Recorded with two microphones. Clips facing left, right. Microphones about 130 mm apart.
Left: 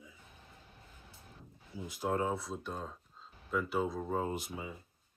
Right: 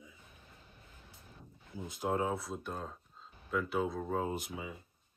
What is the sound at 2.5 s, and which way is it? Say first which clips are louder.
Speech: even; centre (ahead or behind).